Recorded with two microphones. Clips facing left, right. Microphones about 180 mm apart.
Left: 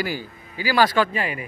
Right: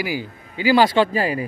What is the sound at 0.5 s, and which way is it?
Speech, 20° right (ahead or behind).